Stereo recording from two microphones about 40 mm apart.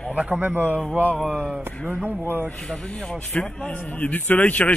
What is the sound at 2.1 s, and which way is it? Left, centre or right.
Speech, right.